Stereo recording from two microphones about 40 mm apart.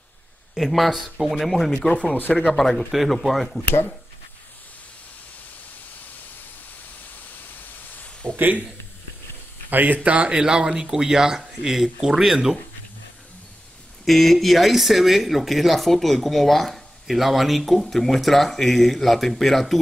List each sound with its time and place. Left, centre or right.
0.6 s speech: centre
1.9 s speech: left
2.5 s speech: centre
2.9 s speech: centre
7.5 s a sound: left
9.7 s speech: right; by 12.5 s centre
14.0 s speech: centre